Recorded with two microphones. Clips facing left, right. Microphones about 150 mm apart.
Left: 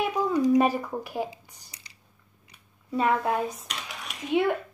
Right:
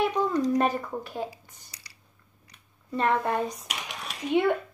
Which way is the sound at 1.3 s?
25° left (ahead or behind).